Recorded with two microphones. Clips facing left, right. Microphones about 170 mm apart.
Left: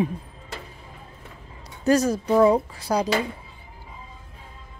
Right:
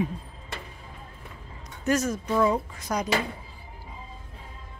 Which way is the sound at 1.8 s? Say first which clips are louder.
Left 5 dB; 35° left (ahead or behind).